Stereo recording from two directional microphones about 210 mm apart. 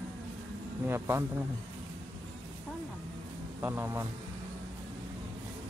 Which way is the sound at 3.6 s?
10° right (ahead or behind).